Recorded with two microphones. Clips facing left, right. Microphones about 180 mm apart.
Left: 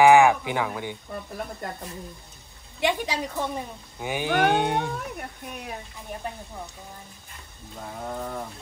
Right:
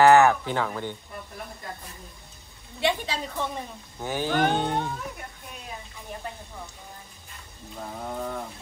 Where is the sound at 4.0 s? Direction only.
15° left (ahead or behind).